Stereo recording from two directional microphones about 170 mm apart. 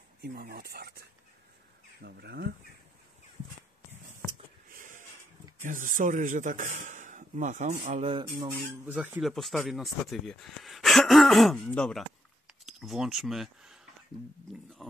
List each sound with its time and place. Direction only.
0.2 s speech: 65° right (ahead or behind)
2.0 s speech: 75° right (ahead or behind)
4.7 s a sound: 50° right (ahead or behind)
5.6 s speech: 50° right (ahead or behind); by 8.5 s 25° right (ahead or behind)
8.8 s speech: 10° right (ahead or behind)
9.2 s speech: centre (ahead or behind)
14.8 s speech: centre (ahead or behind)